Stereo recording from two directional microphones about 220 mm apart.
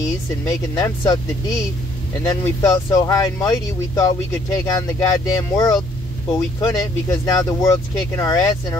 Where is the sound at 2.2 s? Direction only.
15° left (ahead or behind).